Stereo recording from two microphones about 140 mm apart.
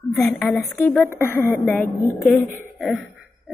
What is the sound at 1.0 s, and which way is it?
A woman's voice, 20° left (ahead or behind).